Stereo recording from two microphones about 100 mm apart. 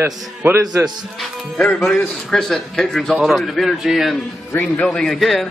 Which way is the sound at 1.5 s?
10° left (ahead or behind).